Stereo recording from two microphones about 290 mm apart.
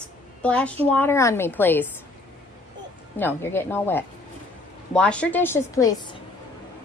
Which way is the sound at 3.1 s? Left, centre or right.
Centre.